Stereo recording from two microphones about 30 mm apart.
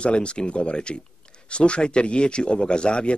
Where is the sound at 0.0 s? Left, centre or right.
Left.